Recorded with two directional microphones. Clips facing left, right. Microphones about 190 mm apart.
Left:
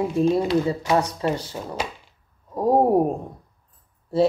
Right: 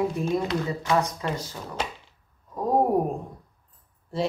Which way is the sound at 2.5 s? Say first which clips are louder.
Left 4 dB; 35° left (ahead or behind).